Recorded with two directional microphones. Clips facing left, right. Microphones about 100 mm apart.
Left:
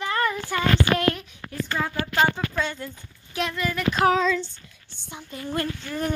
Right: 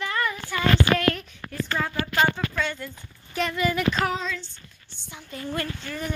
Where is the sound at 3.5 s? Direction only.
10° right (ahead or behind).